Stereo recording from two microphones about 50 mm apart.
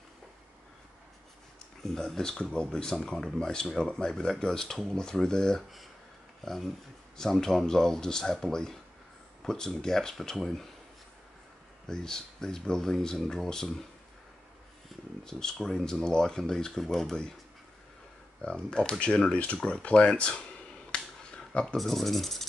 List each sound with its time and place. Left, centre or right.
1.8 s speech: centre
11.9 s speech: centre
15.2 s speech: centre
18.4 s speech: centre
20.9 s a sound: centre
21.7 s speech: centre